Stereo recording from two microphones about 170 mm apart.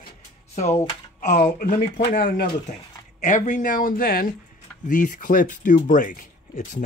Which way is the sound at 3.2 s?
45° left (ahead or behind).